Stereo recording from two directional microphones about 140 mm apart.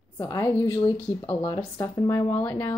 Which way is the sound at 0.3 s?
25° left (ahead or behind).